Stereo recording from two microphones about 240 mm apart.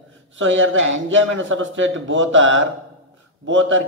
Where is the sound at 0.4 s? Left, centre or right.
Right.